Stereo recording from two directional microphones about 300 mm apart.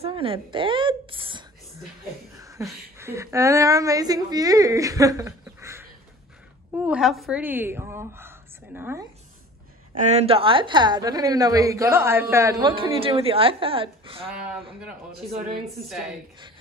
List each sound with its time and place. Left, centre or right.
0.0 s a woman's voice: centre
2.3 s a sound: centre
2.7 s a woman's voice: centre
10.0 s a woman's voice: centre
14.8 s speech: centre
15.4 s a woman's voice: right